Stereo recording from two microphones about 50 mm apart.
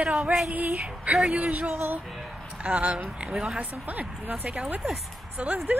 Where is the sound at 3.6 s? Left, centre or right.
Right.